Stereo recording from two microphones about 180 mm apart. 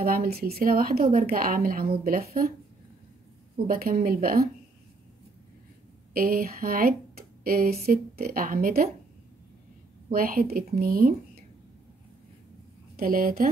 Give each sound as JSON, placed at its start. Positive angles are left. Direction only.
{"t": 0.0, "sound": "speech", "side_deg": -55}
{"t": 3.6, "sound": "speech", "side_deg": -55}
{"t": 6.1, "sound": "speech", "side_deg": -55}
{"t": 10.0, "sound": "a woman's voice", "side_deg": -50}
{"t": 12.9, "sound": "speech", "side_deg": -50}